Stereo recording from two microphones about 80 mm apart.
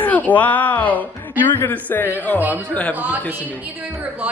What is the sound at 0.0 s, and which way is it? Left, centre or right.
Speech, centre.